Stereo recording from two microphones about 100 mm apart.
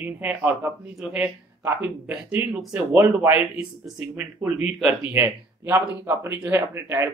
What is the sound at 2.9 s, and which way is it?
Speech, 20° right (ahead or behind).